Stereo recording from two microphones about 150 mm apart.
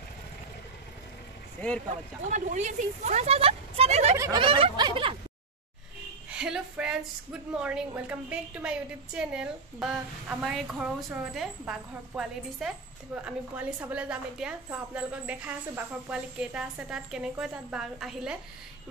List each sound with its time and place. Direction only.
2.3 s speech: 55° right (ahead or behind)
4.4 s a sound: 40° right (ahead or behind)
6.3 s a woman's voice: 5° right (ahead or behind)